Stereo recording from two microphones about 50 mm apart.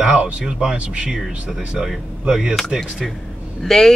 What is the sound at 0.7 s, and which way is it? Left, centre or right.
Speech, right.